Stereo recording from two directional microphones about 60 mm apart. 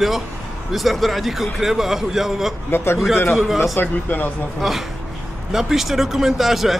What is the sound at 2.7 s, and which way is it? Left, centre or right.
Speech, left.